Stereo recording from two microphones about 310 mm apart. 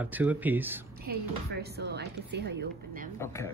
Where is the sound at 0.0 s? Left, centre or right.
Centre.